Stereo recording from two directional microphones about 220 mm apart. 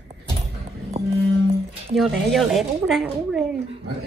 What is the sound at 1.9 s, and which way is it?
Speech, centre (ahead or behind).